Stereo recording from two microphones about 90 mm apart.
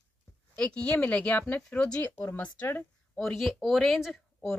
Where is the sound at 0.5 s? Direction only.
10° left (ahead or behind).